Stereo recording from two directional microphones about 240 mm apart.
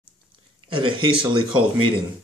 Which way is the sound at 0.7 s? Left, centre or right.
Right.